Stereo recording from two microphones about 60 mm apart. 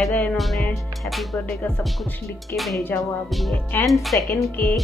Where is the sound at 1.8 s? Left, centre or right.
Centre.